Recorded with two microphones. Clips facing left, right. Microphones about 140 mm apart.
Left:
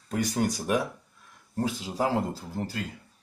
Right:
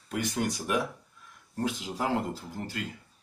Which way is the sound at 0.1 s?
40° left (ahead or behind).